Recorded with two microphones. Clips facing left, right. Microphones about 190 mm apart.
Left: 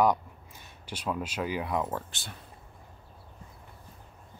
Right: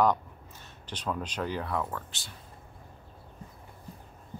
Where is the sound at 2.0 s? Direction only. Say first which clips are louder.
Left 3 dB; 55° left (ahead or behind).